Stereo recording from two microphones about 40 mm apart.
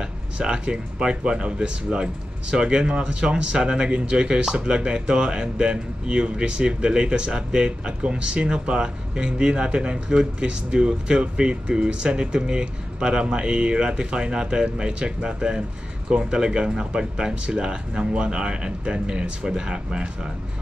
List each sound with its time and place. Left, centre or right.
0.0 s speech: centre